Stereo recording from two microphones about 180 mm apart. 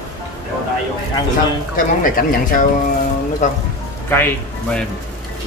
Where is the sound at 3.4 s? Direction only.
40° left (ahead or behind).